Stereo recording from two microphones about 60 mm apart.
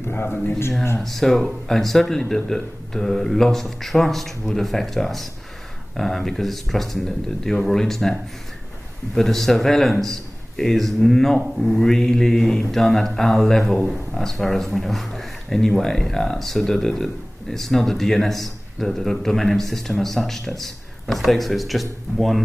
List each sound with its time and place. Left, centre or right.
0.1 s speech: left
1.0 s a man's voice: centre